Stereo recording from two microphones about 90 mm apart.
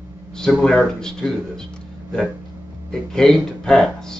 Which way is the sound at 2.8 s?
5° left (ahead or behind).